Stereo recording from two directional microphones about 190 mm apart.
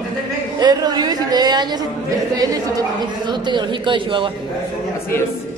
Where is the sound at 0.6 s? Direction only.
20° right (ahead or behind).